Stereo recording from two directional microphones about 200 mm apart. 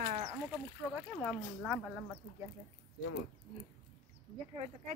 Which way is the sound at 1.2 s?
Centre (ahead or behind).